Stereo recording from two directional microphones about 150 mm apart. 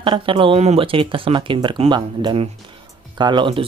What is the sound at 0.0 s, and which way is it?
Speech, 35° right (ahead or behind).